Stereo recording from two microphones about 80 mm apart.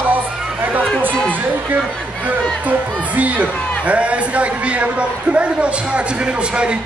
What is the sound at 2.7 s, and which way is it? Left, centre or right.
A man's voice, centre.